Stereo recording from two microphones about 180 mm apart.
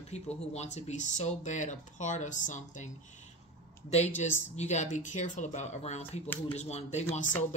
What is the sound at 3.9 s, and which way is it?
Speech, 40° left (ahead or behind).